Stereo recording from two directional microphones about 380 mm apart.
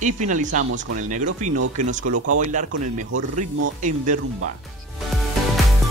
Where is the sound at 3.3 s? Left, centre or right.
Centre.